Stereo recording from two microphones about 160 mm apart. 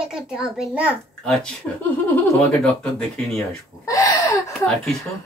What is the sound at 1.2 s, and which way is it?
Speech, 5° left (ahead or behind).